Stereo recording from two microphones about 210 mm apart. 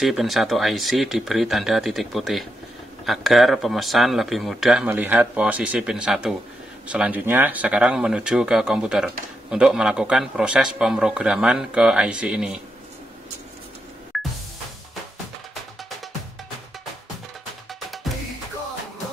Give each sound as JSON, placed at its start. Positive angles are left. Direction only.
{"t": 0.0, "sound": "speech", "side_deg": 0}
{"t": 14.1, "sound": "music", "side_deg": 0}
{"t": 17.6, "sound": "music", "side_deg": 0}